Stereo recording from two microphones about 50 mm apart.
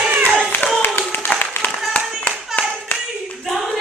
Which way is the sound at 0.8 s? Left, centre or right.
Left.